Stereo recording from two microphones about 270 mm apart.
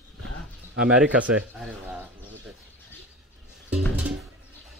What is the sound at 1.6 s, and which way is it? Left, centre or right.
Bird, centre.